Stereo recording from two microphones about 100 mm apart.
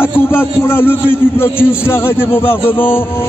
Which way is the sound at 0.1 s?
25° left (ahead or behind).